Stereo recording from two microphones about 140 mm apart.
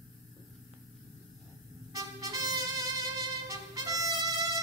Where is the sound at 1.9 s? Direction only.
25° right (ahead or behind).